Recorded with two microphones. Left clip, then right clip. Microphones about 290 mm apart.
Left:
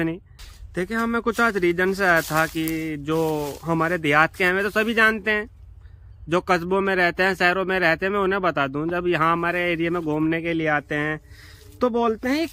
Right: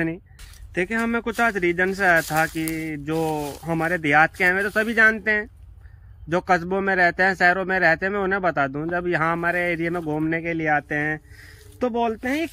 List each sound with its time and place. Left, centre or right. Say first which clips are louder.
0.7 s a man's voice: right 1 dB; centre